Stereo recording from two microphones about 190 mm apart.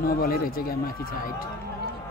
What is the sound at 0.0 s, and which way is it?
Speech, 50° left (ahead or behind).